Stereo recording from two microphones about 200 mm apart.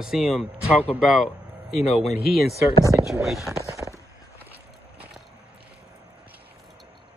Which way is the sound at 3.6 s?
15° right (ahead or behind).